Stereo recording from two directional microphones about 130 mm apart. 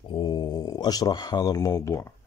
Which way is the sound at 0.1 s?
35° left (ahead or behind).